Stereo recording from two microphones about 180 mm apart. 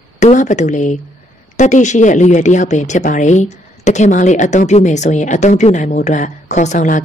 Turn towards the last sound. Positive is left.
turn(degrees=45)  # may be behind; listen again after turning